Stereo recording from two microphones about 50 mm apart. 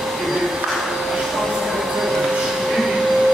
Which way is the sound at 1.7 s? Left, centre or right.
Centre.